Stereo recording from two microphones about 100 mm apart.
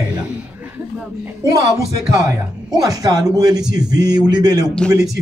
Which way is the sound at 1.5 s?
35° right (ahead or behind).